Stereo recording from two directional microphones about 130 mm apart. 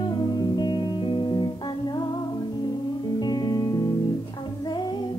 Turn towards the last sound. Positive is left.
turn(degrees=30)  # may be behind; listen again after turning